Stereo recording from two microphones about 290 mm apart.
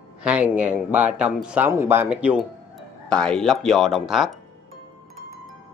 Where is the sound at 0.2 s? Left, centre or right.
Centre.